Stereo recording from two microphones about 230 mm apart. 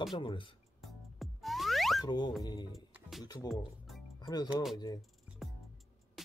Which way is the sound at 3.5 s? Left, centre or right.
Centre.